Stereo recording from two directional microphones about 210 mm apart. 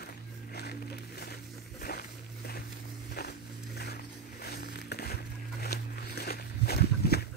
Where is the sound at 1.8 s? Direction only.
45° left (ahead or behind).